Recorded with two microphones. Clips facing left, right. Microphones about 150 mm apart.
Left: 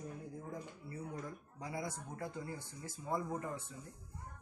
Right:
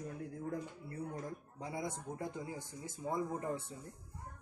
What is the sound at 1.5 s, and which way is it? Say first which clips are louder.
Speech: right 1 dB; 25° right (ahead or behind).